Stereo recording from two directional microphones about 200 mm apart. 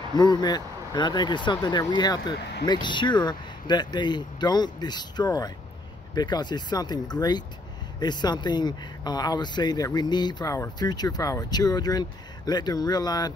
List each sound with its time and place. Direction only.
0.1 s speech: 20° left (ahead or behind)